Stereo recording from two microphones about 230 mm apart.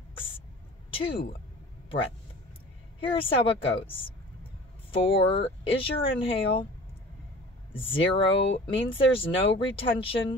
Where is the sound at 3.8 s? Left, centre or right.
Left.